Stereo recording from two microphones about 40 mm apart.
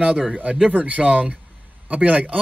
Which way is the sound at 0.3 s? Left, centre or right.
Right.